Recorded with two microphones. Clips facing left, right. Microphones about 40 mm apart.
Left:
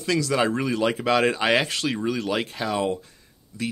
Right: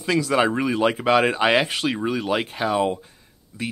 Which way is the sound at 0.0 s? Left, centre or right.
Centre.